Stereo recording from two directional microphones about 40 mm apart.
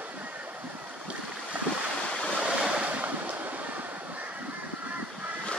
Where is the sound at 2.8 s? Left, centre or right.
Right.